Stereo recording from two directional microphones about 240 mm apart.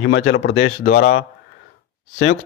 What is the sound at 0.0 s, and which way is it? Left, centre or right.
Speech, left.